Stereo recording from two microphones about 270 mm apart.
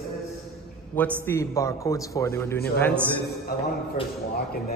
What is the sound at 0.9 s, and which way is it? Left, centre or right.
A man's voice, centre.